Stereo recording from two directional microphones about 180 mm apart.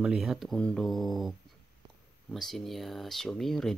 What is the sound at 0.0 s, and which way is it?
Speech, 5° right (ahead or behind).